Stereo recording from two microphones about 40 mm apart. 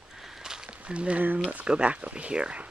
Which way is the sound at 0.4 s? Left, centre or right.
Centre.